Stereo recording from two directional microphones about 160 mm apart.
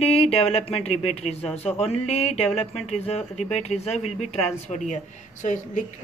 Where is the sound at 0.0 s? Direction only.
40° left (ahead or behind).